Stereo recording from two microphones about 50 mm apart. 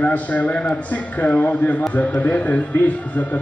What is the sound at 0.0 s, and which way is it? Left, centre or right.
A man's voice, left.